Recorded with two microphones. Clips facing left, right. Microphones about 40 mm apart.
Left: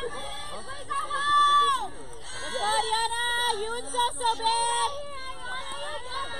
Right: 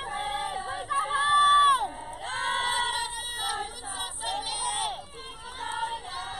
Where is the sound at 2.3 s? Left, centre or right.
Right.